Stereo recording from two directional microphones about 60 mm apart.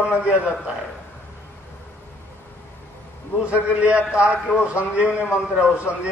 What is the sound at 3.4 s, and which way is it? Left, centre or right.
A man's voice, right.